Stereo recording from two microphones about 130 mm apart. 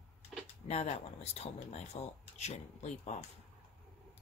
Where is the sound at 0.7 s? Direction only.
55° left (ahead or behind).